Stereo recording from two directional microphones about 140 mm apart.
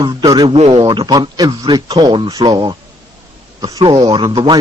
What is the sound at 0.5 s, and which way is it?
Speech, 50° right (ahead or behind).